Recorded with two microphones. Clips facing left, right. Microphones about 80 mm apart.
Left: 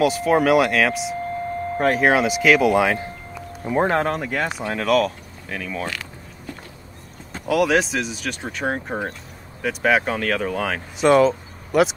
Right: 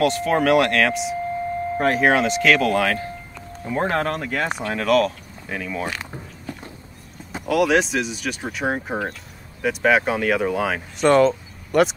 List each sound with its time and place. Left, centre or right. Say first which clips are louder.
0.0 s speech: left 1 dB; centre
5.9 s creak: right 1 dB; right
7.4 s speech: even; centre
11.0 s speech: even; centre